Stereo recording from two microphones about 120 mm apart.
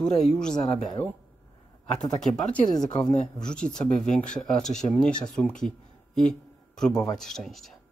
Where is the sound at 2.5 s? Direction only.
5° left (ahead or behind).